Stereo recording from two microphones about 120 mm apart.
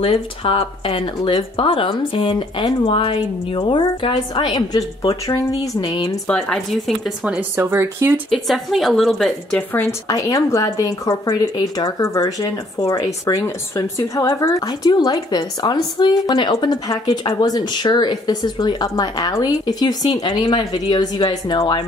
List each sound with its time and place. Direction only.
0.0 s a woman's voice: 50° left (ahead or behind); by 5.9 s 35° left (ahead or behind)
6.2 s speech: 5° left (ahead or behind)
7.5 s speech: 20° right (ahead or behind)
8.3 s a woman's voice: centre (ahead or behind)
9.6 s speech: 15° left (ahead or behind)
10.0 s a woman's voice: 30° left (ahead or behind)